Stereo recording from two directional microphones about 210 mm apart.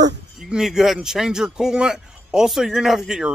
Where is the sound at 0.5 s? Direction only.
Centre (ahead or behind).